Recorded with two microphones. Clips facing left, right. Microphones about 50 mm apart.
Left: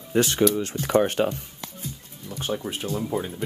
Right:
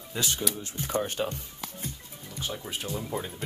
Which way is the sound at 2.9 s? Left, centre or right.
Centre.